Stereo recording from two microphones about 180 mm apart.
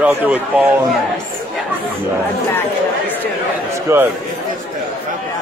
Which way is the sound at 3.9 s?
15° right (ahead or behind).